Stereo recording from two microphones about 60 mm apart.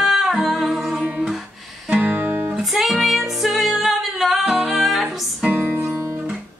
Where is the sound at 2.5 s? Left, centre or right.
Centre.